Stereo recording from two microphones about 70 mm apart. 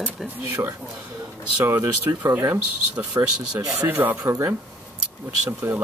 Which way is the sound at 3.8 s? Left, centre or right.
Right.